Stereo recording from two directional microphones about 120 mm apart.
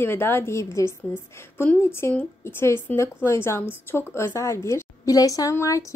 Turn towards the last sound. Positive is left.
turn(degrees=25)  # may be behind; listen again after turning